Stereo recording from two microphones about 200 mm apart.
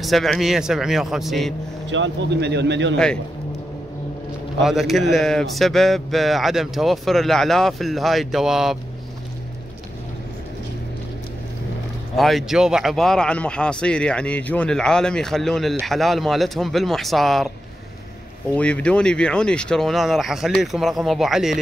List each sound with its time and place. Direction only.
0.0 s speech: centre (ahead or behind)
1.9 s speech: 60° right (ahead or behind)
4.6 s speech: centre (ahead or behind)
12.2 s speech: centre (ahead or behind)
18.5 s speech: 5° left (ahead or behind)